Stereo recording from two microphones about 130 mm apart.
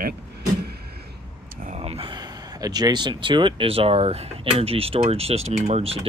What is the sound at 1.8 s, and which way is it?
Speech, 45° right (ahead or behind).